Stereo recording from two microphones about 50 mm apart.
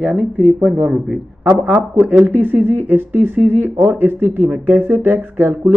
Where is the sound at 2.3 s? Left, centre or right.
Right.